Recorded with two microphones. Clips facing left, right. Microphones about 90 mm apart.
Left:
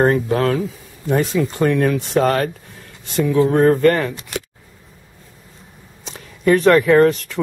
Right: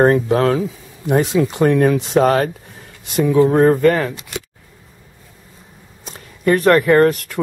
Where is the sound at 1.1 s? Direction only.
20° right (ahead or behind).